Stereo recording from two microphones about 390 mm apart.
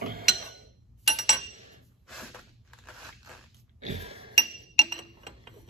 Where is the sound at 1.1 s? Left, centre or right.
Centre.